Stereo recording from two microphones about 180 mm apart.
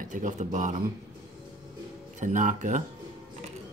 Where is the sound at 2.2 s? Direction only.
45° right (ahead or behind).